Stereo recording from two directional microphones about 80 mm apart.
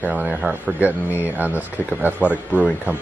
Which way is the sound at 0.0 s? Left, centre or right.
Centre.